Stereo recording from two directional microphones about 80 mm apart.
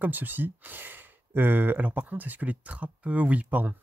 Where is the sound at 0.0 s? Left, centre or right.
Right.